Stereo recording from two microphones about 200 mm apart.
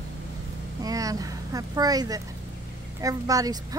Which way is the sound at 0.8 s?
20° right (ahead or behind).